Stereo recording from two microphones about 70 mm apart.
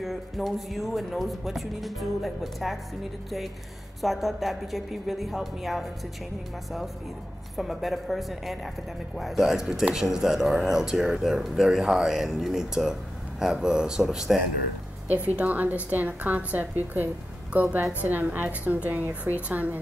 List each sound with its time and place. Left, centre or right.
0.0 s speech: centre
4.0 s speech: centre
7.5 s speech: centre
15.3 s a woman's voice: right